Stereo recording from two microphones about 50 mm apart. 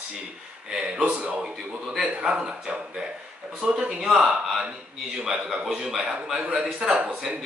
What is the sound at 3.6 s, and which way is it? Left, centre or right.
Speech, centre.